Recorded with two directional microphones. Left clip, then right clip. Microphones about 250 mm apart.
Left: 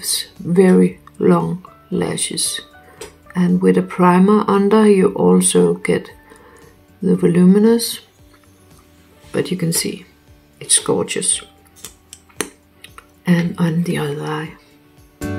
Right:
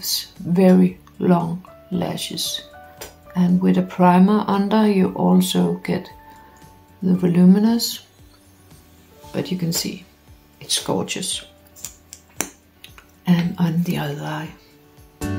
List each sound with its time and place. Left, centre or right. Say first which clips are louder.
0.0 s speech: left 2 dB; centre
9.3 s speech: left 5 dB; centre
10.6 s computer keyboard: left 4 dB; centre